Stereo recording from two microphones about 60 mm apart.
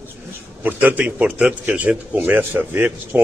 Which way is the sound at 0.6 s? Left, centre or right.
Right.